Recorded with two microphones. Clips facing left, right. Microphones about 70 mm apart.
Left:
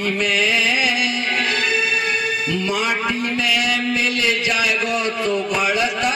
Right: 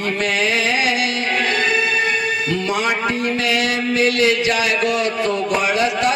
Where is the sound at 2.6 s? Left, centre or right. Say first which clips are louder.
Right 1 dB; right.